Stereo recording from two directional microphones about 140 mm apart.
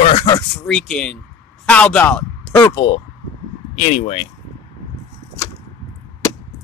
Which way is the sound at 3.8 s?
50° left (ahead or behind).